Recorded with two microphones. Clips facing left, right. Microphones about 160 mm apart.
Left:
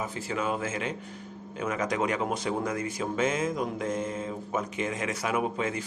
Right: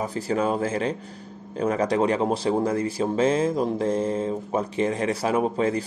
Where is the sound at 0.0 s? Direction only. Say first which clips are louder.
Right 7 dB; 35° right (ahead or behind).